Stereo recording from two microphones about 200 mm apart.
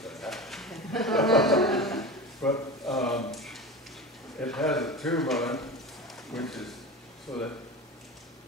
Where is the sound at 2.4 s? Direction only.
5° left (ahead or behind).